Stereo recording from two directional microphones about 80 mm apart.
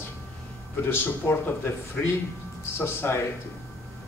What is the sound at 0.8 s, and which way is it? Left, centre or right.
Speech, left.